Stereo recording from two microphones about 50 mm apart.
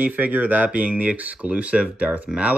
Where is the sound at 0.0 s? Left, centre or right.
Right.